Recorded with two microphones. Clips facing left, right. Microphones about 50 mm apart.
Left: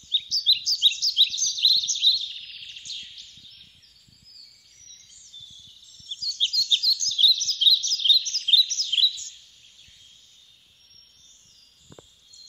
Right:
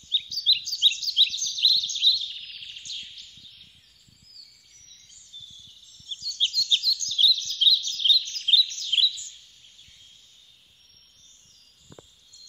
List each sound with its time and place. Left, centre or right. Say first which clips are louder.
0.1 s a sound: left 1 dB; centre
0.7 s bird: left 1 dB; centre
2.9 s bird: even; right
6.0 s chirp: even; centre
8.0 s bird: left 1 dB; centre
11.9 s a sound: even; centre